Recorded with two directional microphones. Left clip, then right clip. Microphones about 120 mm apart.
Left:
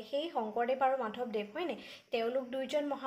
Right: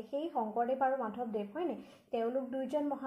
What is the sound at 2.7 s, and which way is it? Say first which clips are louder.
Speech: left 1 dB; 10° right (ahead or behind).